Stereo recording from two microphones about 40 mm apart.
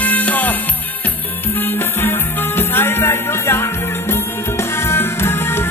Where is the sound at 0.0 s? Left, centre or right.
Left.